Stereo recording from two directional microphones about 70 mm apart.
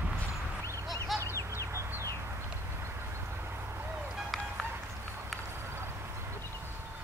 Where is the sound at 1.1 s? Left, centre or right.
Left.